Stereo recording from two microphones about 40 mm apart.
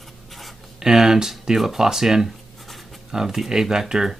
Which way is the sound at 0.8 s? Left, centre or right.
Centre.